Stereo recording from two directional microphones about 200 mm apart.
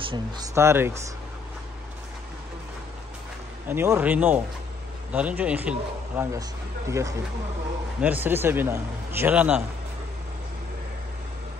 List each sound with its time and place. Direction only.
0.0 s speech: 25° right (ahead or behind)
0.6 s a man's voice: 10° right (ahead or behind)
3.6 s a man's voice: 10° right (ahead or behind)